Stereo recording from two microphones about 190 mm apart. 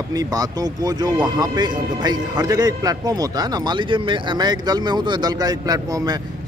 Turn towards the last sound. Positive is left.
turn(degrees=-20)  # may be behind; listen again after turning